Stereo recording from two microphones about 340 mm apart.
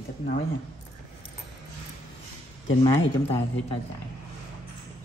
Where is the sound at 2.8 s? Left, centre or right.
Centre.